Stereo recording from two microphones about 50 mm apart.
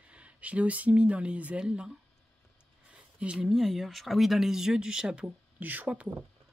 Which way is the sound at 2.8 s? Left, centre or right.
Right.